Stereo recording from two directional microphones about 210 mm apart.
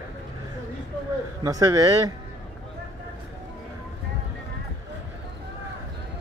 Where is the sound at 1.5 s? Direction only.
15° right (ahead or behind).